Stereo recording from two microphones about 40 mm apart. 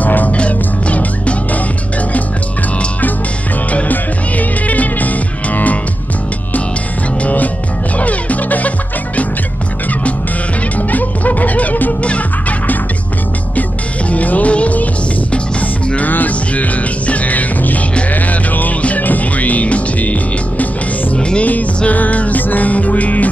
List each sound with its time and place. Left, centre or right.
0.0 s music: left
3.9 s music: left
8.0 s music: left
10.8 s music: left
14.1 s music: left
16.0 s music: left
18.8 s music: left
21.2 s music: left
21.5 s music: left